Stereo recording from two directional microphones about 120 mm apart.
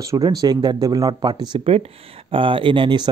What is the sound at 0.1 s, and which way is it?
Speech, 30° right (ahead or behind).